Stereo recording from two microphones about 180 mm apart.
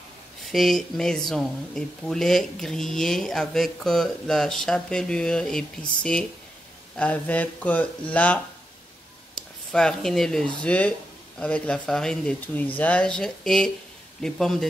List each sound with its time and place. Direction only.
0.5 s speech: centre (ahead or behind)
9.7 s speech: 5° left (ahead or behind)